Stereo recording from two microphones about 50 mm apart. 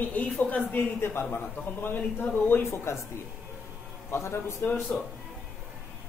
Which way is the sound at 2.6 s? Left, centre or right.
Left.